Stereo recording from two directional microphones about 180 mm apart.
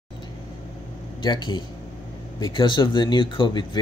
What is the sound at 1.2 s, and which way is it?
Speech, 25° left (ahead or behind).